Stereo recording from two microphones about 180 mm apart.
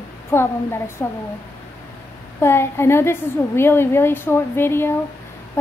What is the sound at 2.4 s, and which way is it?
A woman's voice, 15° left (ahead or behind).